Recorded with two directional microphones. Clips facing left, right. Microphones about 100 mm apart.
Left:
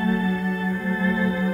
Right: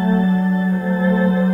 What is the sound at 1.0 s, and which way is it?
Music, 25° right (ahead or behind).